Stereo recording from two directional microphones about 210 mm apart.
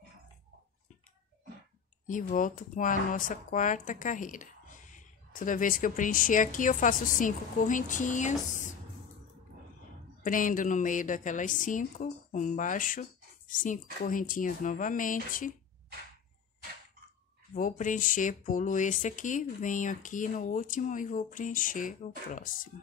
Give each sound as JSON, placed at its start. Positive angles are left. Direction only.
{"t": 2.0, "sound": "speech", "side_deg": 40}
{"t": 10.2, "sound": "a woman's voice", "side_deg": 40}
{"t": 17.6, "sound": "speech", "side_deg": 40}